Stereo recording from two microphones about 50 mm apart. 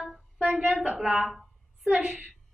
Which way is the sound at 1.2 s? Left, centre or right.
Centre.